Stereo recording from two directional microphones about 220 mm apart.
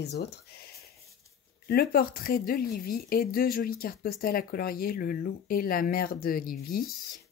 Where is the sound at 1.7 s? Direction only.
45° left (ahead or behind).